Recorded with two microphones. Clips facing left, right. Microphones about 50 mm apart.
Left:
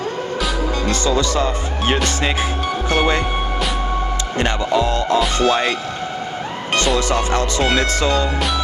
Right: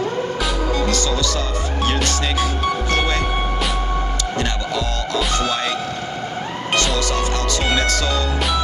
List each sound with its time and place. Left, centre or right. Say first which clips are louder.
0.8 s speech: left 2 dB; left
2.0 s music: left 1 dB; left
4.4 s music: left 7 dB; left
5.4 s speech: left 5 dB; left
7.0 s music: left 3 dB; left